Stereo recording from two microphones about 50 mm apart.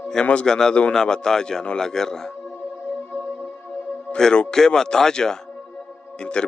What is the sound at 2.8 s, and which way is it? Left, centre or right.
Music, left.